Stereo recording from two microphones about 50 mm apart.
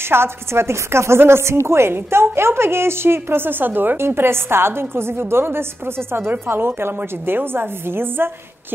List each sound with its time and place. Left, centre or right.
0.1 s a woman's voice: right
4.0 s a woman's voice: right